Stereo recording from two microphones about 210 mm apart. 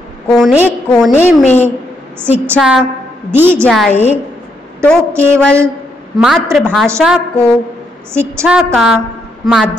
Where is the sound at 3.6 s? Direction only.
5° left (ahead or behind).